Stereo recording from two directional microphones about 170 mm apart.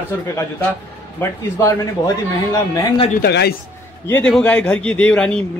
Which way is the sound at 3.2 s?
75° left (ahead or behind).